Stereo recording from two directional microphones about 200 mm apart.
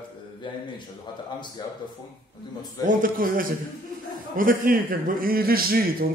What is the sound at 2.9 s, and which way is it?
A man's voice, 45° right (ahead or behind).